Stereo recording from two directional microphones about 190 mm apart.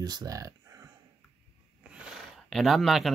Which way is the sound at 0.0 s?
20° right (ahead or behind).